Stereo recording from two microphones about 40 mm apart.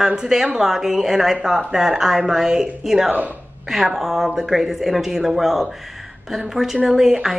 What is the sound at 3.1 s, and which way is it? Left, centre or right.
Speech, right.